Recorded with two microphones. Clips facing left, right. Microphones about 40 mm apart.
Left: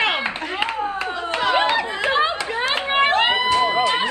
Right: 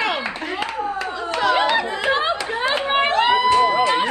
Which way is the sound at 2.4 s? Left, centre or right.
Left.